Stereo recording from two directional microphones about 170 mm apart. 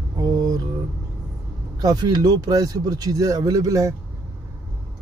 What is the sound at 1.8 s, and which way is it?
Speech, 25° right (ahead or behind).